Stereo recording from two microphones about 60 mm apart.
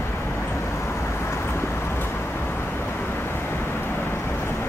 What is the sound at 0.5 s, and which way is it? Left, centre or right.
Vehicle, left.